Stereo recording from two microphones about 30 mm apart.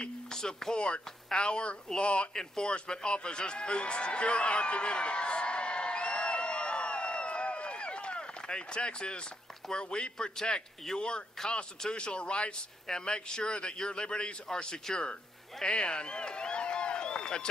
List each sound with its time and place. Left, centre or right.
0.3 s speech: centre
0.7 s a man's voice: left
2.3 s speech: left
2.7 s a sound: left
9.7 s a man's voice: left
15.6 s a sound: left